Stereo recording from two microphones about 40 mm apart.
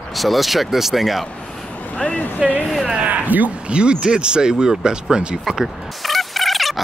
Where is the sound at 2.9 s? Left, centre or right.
Right.